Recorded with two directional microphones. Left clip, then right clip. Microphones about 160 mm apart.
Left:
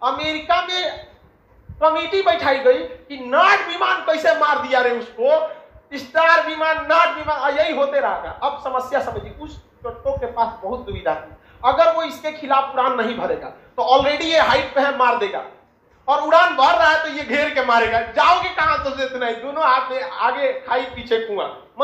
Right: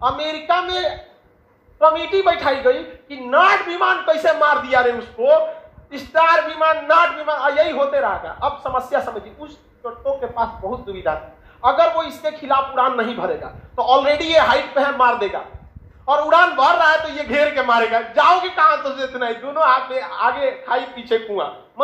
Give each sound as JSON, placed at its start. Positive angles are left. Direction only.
{"t": 0.0, "sound": "a man's voice", "side_deg": -20}
{"t": 11.1, "sound": "a man's voice", "side_deg": -20}